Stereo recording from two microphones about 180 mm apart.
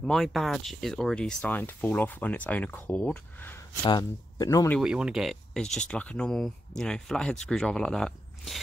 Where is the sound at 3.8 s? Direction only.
20° left (ahead or behind).